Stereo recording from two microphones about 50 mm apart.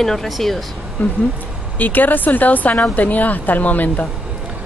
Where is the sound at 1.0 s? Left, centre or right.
Left.